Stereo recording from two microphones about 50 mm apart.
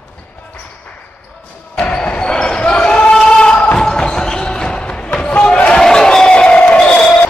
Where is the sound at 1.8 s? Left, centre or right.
Left.